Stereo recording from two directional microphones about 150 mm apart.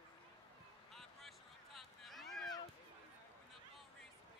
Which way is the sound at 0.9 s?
Centre (ahead or behind).